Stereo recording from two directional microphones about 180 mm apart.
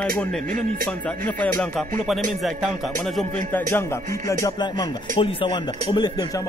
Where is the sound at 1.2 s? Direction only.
5° left (ahead or behind).